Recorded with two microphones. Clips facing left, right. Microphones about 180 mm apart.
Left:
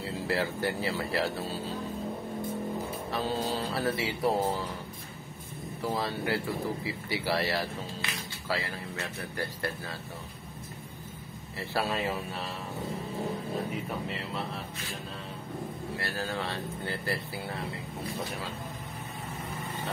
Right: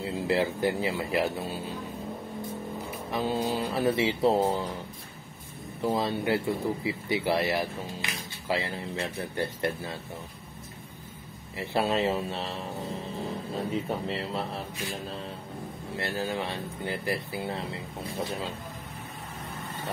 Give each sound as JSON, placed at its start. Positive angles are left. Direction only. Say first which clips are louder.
{"t": 0.0, "sound": "speech", "louder": "right 4 dB", "side_deg": -20}
{"t": 3.1, "sound": "music", "louder": "right 4 dB", "side_deg": -15}
{"t": 3.5, "sound": "speech", "louder": "right 4 dB", "side_deg": -20}
{"t": 5.8, "sound": "speech", "louder": "right 4 dB", "side_deg": -20}
{"t": 11.5, "sound": "speech", "louder": "right 4 dB", "side_deg": -20}
{"t": 13.8, "sound": "speech", "louder": "right 4 dB", "side_deg": -30}
{"t": 16.0, "sound": "speech", "louder": "right 5 dB", "side_deg": -20}